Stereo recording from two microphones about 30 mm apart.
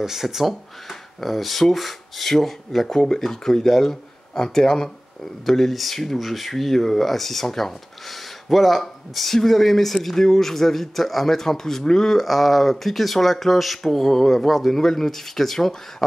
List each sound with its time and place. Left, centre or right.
0.0 s speech: centre
5.4 s speech: centre
12.2 s speech: centre